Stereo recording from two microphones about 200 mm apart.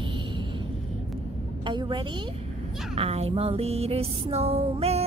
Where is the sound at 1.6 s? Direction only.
25° right (ahead or behind).